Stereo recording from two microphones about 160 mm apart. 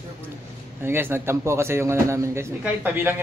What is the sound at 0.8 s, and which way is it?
A man's voice, 15° right (ahead or behind).